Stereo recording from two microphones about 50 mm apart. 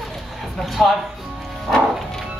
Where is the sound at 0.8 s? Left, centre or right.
Centre.